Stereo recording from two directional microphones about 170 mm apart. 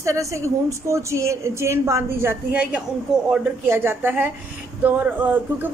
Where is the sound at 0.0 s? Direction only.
20° right (ahead or behind).